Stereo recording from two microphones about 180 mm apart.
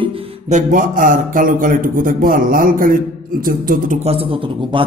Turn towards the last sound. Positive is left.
turn(degrees=-30)  # may be behind; listen again after turning